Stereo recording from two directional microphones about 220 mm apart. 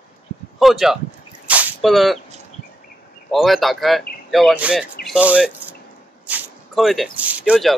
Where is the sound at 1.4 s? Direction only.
5° right (ahead or behind).